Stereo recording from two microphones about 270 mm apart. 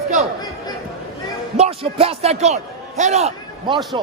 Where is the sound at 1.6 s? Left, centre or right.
Right.